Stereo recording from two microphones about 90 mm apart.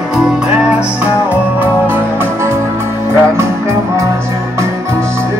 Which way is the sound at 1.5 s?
25° right (ahead or behind).